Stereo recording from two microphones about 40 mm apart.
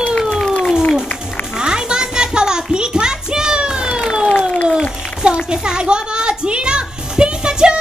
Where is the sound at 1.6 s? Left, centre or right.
Centre.